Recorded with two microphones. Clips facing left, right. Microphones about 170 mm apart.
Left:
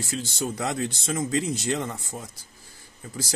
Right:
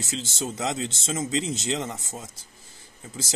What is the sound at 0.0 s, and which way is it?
Speech, 20° right (ahead or behind).